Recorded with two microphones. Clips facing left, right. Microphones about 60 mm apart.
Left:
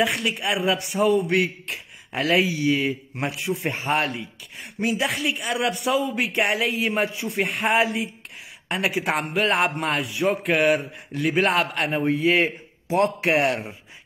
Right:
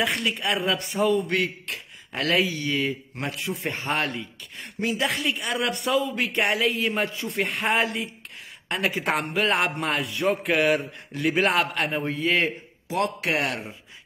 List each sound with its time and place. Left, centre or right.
0.0 s a man's voice: centre
3.2 s a man's voice: centre
12.8 s speech: left